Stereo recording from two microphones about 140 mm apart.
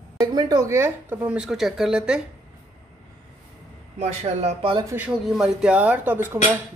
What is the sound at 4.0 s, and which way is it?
Speech, 50° right (ahead or behind).